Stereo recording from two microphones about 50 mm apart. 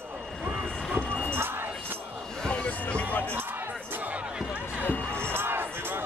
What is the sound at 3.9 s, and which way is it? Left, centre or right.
Music, right.